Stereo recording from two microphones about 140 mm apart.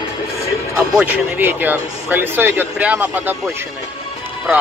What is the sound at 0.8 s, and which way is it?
Speech, 10° right (ahead or behind).